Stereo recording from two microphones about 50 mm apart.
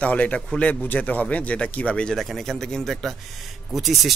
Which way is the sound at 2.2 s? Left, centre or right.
Centre.